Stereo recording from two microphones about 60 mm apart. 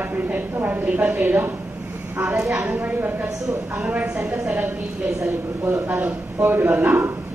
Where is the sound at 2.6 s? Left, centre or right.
Right.